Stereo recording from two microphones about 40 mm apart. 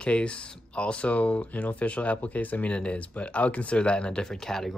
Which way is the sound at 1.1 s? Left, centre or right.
Left.